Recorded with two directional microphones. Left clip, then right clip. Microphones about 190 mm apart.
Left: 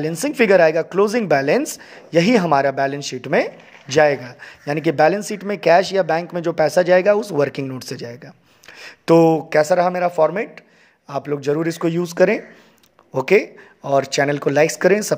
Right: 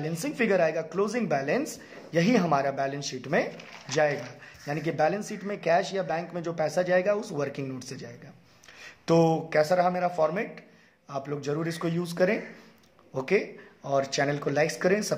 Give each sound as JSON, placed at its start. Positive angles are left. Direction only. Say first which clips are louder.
{"t": 0.0, "sound": "speech", "louder": "left 11 dB", "side_deg": 45}